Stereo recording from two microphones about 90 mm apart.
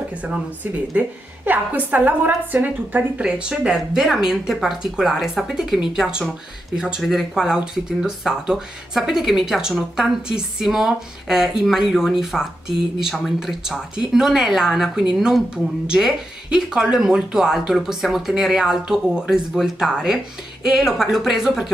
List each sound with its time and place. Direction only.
0.9 s a woman's voice: 20° right (ahead or behind)